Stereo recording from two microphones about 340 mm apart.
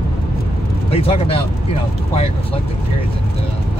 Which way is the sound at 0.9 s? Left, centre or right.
Centre.